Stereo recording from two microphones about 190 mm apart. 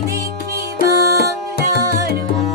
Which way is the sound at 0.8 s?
55° left (ahead or behind).